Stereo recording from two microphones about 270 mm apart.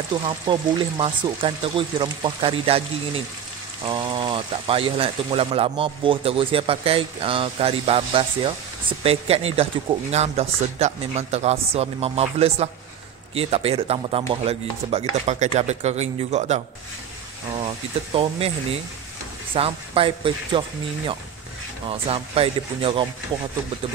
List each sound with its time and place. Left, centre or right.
0.1 s speech: centre
3.8 s speech: centre
18.1 s speech: right
21.8 s speech: right